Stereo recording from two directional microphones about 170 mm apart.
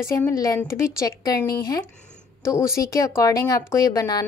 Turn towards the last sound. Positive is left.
turn(degrees=20)  # may be behind; listen again after turning